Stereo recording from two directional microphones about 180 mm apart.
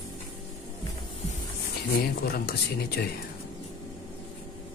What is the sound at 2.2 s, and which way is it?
Speech, 60° left (ahead or behind).